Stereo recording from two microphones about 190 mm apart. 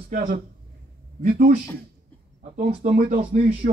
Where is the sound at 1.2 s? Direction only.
50° right (ahead or behind).